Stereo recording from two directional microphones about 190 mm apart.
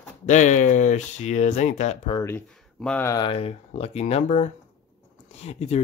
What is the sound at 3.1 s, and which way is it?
Speech, 25° left (ahead or behind).